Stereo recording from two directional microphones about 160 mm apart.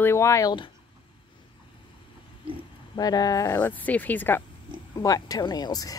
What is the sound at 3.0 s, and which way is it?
Speech, 25° left (ahead or behind).